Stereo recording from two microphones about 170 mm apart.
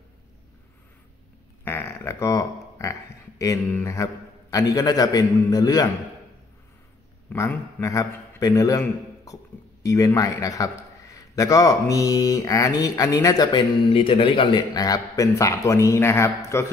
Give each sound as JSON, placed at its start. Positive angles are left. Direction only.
{"t": 1.6, "sound": "speech", "side_deg": 15}
{"t": 7.3, "sound": "a man's voice", "side_deg": 15}